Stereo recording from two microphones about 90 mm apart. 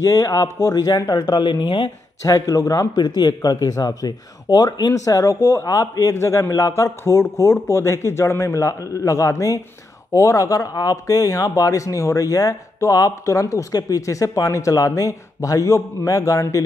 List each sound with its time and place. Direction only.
0.0 s speech: 45° left (ahead or behind)
2.2 s speech: 40° left (ahead or behind)
4.9 s speech: 40° left (ahead or behind)